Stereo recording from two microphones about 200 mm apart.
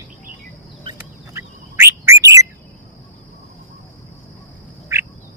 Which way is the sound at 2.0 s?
15° right (ahead or behind).